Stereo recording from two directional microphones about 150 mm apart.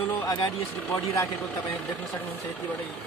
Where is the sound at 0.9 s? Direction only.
20° left (ahead or behind).